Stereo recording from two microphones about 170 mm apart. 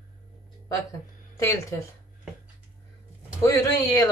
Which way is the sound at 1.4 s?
15° left (ahead or behind).